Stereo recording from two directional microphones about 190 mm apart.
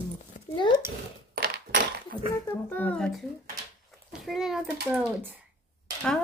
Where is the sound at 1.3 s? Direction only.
55° right (ahead or behind).